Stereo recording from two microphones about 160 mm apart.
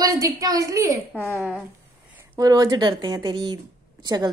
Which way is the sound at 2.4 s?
20° right (ahead or behind).